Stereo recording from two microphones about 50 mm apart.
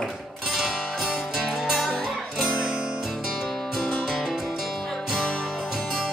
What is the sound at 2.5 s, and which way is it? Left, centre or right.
Music, centre.